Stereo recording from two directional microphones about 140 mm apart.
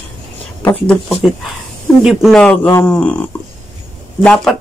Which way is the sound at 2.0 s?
5° right (ahead or behind).